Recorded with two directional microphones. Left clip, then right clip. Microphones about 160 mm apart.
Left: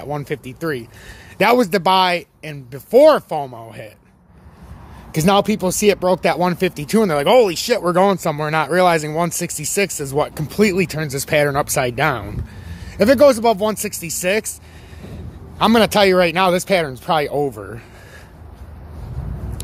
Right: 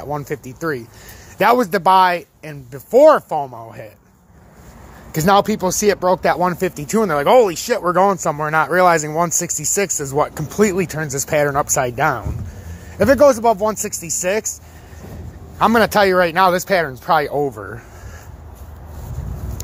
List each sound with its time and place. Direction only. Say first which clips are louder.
0.0 s speech: even; 10° left (ahead or behind)
5.1 s speech: right 2 dB; 5° left (ahead or behind)
8.8 s speech: right 2 dB; centre (ahead or behind)